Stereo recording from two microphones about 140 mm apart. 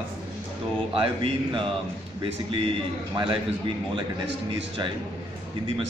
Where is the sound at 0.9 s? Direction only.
40° right (ahead or behind).